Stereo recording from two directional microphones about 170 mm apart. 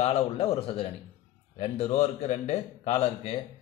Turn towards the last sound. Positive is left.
turn(degrees=35)  # may be behind; listen again after turning